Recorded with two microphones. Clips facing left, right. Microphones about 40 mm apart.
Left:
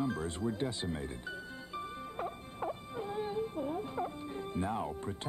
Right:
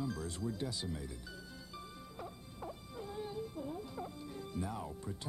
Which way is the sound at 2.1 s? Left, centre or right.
Left.